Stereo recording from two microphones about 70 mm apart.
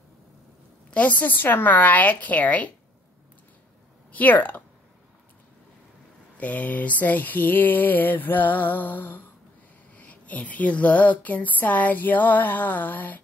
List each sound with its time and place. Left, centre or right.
0.8 s speech: centre
4.1 s speech: left
6.3 s speech: left